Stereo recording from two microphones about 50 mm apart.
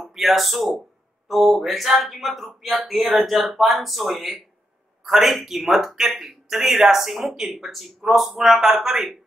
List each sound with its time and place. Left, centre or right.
0.0 s a man's voice: centre